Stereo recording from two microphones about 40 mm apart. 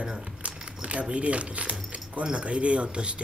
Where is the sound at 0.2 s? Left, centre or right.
Right.